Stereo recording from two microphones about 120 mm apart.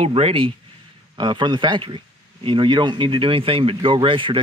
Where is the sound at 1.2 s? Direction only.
40° right (ahead or behind).